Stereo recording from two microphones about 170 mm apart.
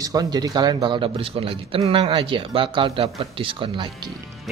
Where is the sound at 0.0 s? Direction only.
20° right (ahead or behind).